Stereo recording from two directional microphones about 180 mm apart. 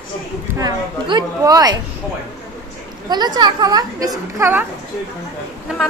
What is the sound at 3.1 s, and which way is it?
A woman's voice, 25° right (ahead or behind).